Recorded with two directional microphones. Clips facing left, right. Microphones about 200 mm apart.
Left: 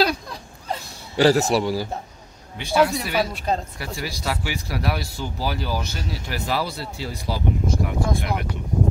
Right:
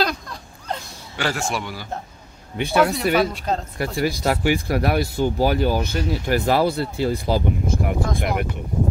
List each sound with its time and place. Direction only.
1.1 s a man's voice: 35° left (ahead or behind)
2.5 s speech: 55° right (ahead or behind)
3.2 s a woman's voice: centre (ahead or behind)
3.7 s speech: 55° right (ahead or behind)